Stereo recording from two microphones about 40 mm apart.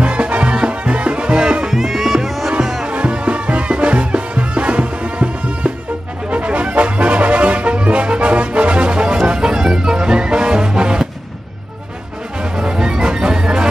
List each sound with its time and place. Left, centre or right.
0.0 s music: right
1.7 s music: centre
2.9 s music: right
12.4 s music: centre